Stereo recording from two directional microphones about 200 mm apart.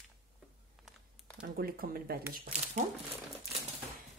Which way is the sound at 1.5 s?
45° right (ahead or behind).